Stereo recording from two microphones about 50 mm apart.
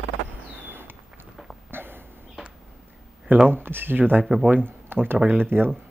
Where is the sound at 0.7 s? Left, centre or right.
Right.